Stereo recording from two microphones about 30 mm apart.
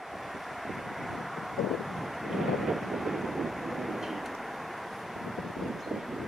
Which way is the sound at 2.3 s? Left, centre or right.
Centre.